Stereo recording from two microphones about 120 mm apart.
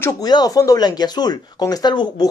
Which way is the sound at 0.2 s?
35° left (ahead or behind).